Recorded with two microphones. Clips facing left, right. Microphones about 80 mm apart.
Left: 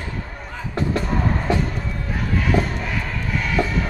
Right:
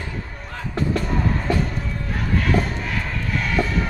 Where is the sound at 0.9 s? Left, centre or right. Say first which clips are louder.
Left 1 dB; centre.